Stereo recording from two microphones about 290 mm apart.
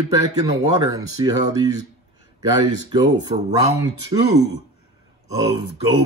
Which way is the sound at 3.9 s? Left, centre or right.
Left.